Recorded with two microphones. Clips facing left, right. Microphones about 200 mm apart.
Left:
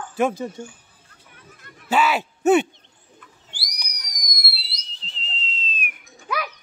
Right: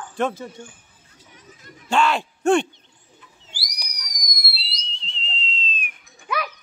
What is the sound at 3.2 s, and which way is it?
Bird, 55° left (ahead or behind).